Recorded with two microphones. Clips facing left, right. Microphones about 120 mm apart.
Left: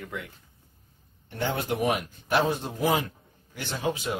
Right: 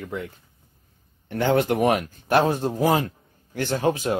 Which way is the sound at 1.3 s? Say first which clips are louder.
Right 8 dB; 90° right.